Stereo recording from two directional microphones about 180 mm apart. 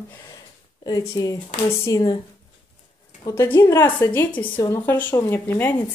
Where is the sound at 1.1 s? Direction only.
20° left (ahead or behind).